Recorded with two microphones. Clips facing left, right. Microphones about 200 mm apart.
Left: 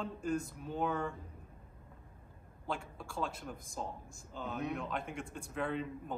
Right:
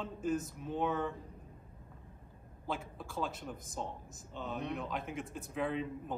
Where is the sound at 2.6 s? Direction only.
Centre (ahead or behind).